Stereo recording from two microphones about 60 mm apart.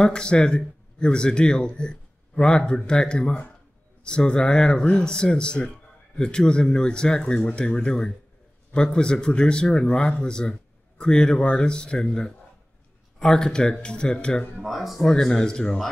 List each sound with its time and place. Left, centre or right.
0.0 s speech: centre
14.6 s speech: centre